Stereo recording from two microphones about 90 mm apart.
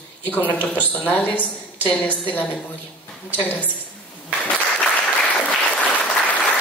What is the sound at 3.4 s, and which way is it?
Speech, 20° left (ahead or behind).